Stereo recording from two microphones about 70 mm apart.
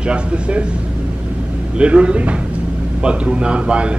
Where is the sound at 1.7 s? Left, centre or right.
Centre.